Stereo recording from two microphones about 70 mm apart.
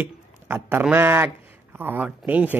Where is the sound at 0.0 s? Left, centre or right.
Right.